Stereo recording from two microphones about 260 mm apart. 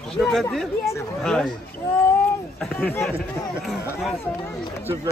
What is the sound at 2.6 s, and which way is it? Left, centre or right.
Speech, centre.